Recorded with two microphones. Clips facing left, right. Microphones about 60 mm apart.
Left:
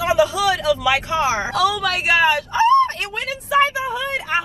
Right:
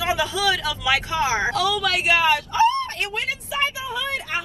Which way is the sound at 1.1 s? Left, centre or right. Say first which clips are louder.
Left 2 dB; left.